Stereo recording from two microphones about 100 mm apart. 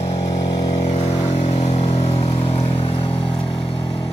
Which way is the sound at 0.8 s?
75° left (ahead or behind).